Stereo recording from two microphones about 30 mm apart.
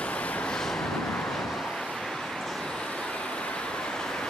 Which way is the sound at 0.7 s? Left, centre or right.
Centre.